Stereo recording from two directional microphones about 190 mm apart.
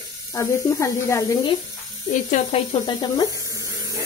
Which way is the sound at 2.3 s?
30° left (ahead or behind).